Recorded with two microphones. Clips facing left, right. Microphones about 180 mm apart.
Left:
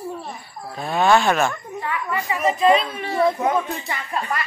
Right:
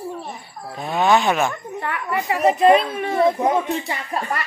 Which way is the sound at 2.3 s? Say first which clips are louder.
Right 3 dB; 60° right (ahead or behind).